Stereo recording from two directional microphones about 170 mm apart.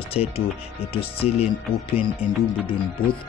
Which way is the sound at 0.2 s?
40° left (ahead or behind).